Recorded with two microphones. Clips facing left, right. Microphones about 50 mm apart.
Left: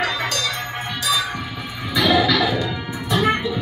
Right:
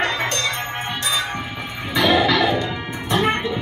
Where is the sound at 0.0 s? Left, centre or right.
Right.